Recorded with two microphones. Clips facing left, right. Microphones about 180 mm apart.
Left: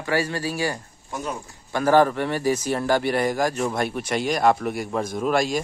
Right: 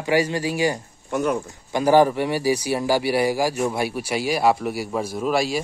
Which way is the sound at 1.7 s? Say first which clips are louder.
Right 2 dB; 15° right (ahead or behind).